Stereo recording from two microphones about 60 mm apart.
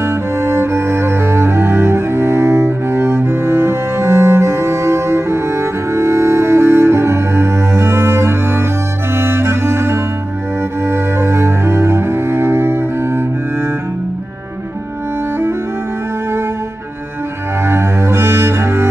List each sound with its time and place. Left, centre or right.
0.0 s cello: right
9.1 s music: right
10.9 s cello: right
17.6 s cello: right